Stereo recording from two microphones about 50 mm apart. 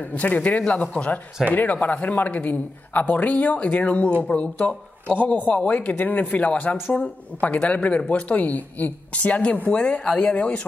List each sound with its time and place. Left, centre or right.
0.1 s speech: left